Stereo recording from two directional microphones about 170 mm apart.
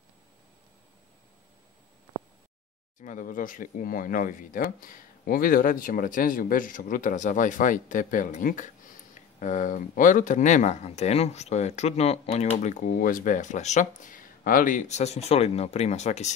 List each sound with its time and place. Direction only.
3.0 s speech: 50° left (ahead or behind)
12.6 s speech: 50° left (ahead or behind)